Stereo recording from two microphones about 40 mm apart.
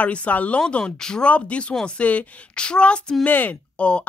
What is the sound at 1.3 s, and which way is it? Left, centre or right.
Speech, left.